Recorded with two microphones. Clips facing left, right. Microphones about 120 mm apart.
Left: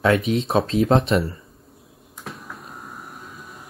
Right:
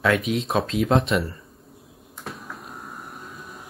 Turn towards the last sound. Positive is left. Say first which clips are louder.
# even
turn(degrees=0)  # may be behind; listen again after turning